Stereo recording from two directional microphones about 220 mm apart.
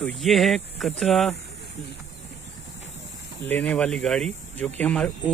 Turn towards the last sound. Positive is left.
turn(degrees=5)  # may be behind; listen again after turning